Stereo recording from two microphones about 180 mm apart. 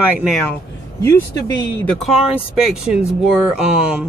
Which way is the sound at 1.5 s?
20° left (ahead or behind).